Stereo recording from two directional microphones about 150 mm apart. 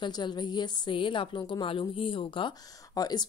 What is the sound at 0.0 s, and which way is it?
A woman's voice, 30° left (ahead or behind).